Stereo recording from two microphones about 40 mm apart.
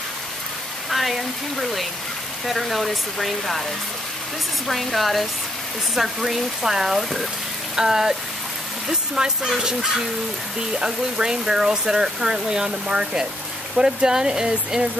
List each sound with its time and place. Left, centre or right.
0.8 s a sound: centre
2.4 s speech: centre
4.6 s speech: centre; by 14.9 s right